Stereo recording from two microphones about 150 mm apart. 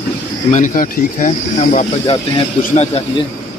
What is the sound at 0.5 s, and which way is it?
Speech, 60° left (ahead or behind).